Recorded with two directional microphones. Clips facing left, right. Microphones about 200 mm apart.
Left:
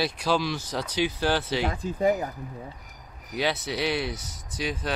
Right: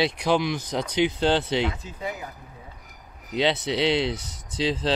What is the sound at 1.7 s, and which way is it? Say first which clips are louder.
Speech: left 10 dB; 50° left (ahead or behind).